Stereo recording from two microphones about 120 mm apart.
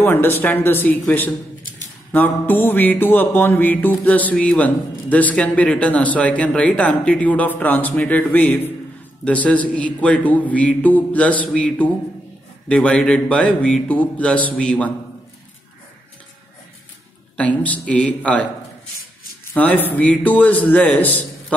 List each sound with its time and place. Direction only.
0.0 s music: 20° left (ahead or behind)
17.4 s music: 10° left (ahead or behind)